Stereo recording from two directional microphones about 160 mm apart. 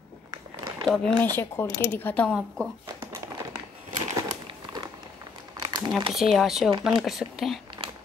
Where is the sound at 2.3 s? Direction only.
5° right (ahead or behind).